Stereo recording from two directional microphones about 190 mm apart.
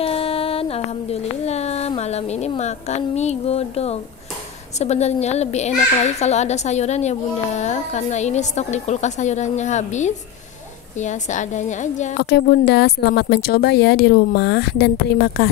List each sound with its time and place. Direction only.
0.0 s a sound: 30° left (ahead or behind)
4.7 s a woman's voice: 35° left (ahead or behind)
12.2 s speech: 55° left (ahead or behind)